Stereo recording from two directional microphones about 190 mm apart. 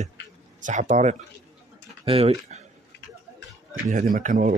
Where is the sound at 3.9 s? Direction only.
45° right (ahead or behind).